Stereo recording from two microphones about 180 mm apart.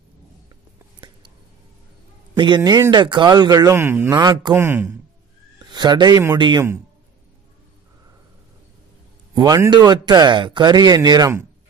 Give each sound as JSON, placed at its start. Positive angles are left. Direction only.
{"t": 2.3, "sound": "speech", "side_deg": -25}
{"t": 4.6, "sound": "speech", "side_deg": -15}
{"t": 5.6, "sound": "speech", "side_deg": -25}
{"t": 9.3, "sound": "speech", "side_deg": -20}